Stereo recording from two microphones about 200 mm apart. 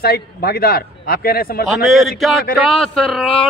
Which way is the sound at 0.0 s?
50° left (ahead or behind).